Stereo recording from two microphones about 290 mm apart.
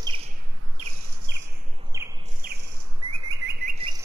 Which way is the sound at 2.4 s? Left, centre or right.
Right.